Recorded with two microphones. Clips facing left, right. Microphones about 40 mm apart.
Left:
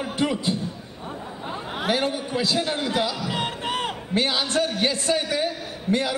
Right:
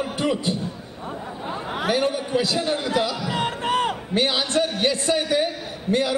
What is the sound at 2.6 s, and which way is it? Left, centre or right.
Speech, left.